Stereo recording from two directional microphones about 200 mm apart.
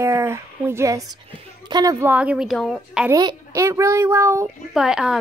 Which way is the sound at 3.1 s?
15° right (ahead or behind).